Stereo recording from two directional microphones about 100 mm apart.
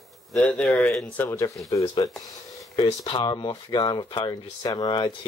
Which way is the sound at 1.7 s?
40° left (ahead or behind).